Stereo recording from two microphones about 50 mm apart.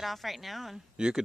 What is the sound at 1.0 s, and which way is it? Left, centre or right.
Speech, centre.